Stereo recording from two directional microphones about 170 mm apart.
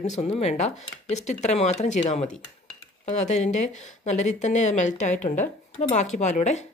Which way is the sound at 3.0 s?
45° left (ahead or behind).